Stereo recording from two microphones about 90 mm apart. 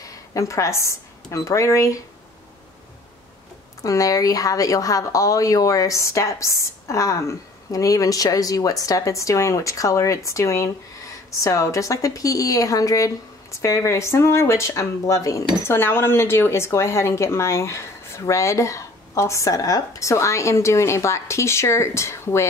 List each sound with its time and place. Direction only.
0.0 s speech: 40° left (ahead or behind)
3.8 s speech: 40° left (ahead or behind)